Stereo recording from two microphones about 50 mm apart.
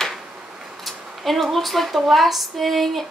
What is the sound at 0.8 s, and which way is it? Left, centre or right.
Speech, centre.